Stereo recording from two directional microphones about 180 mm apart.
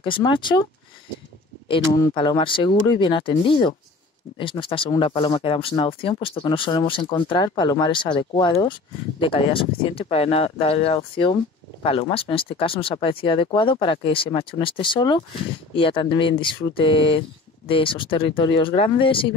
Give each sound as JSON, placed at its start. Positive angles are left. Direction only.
{"t": 0.0, "sound": "speech", "side_deg": 25}
{"t": 2.0, "sound": "speech", "side_deg": 25}